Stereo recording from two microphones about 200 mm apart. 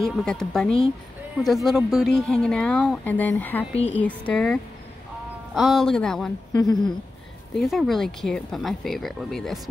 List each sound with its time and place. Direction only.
0.0 s speech: 5° left (ahead or behind)
6.5 s speech: 20° left (ahead or behind)
7.5 s speech: centre (ahead or behind)